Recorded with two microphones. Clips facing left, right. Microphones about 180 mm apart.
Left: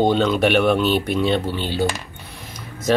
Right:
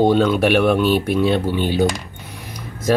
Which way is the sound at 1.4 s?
15° right (ahead or behind).